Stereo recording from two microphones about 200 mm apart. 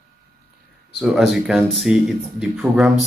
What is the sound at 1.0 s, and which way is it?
Speech, centre (ahead or behind).